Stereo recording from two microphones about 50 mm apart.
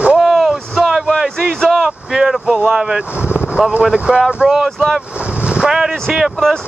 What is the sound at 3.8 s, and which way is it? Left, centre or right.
Speech, centre.